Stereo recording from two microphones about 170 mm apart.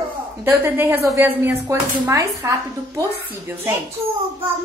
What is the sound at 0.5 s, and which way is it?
Speech, 15° right (ahead or behind).